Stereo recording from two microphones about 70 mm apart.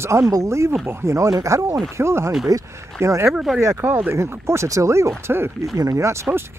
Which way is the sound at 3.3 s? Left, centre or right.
Centre.